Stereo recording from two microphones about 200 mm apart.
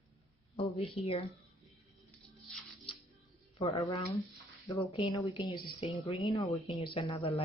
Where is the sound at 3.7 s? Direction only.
20° left (ahead or behind).